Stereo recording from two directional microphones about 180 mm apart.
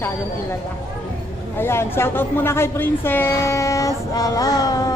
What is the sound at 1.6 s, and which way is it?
A woman's voice, 15° left (ahead or behind).